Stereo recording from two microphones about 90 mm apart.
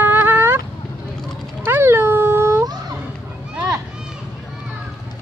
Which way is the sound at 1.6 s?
25° right (ahead or behind).